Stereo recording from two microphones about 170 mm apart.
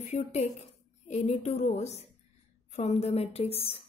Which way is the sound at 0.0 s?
40° left (ahead or behind).